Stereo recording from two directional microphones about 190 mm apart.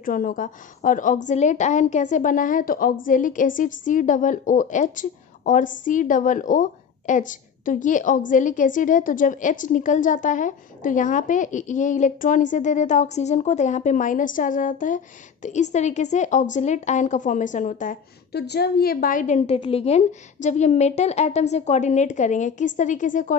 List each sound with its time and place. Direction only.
0.0 s a woman's voice: 45° left (ahead or behind)
18.3 s a woman's voice: 60° left (ahead or behind); by 23.3 s 40° left (ahead or behind)